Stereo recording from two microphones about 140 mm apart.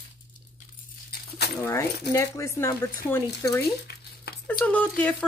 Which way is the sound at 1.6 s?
20° left (ahead or behind).